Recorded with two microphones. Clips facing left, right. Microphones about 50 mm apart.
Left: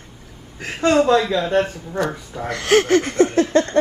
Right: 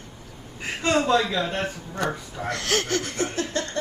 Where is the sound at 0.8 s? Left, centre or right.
Left.